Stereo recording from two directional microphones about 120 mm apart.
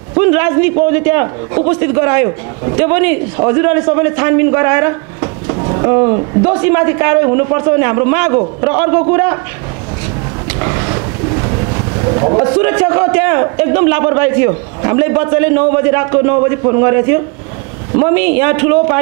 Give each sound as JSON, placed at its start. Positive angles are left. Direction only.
{"t": 0.1, "sound": "a man's voice", "side_deg": -20}
{"t": 6.6, "sound": "a man's voice", "side_deg": -20}
{"t": 12.4, "sound": "a man's voice", "side_deg": -20}